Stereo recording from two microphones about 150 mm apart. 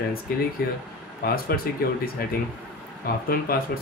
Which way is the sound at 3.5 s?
80° left.